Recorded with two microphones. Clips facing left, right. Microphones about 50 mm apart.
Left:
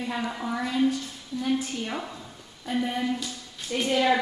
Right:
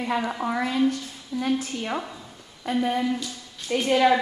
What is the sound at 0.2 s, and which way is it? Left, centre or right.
Speech, right.